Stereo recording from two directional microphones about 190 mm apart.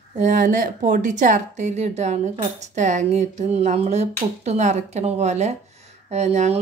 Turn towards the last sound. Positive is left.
turn(degrees=-35)  # may be behind; listen again after turning